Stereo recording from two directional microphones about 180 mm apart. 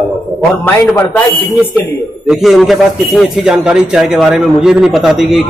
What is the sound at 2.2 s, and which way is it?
Speech, centre (ahead or behind).